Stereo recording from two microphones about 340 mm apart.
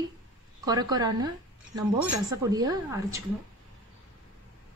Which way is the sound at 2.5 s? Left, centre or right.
Centre.